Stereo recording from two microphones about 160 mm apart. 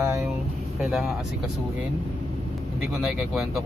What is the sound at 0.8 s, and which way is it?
Speech, centre (ahead or behind).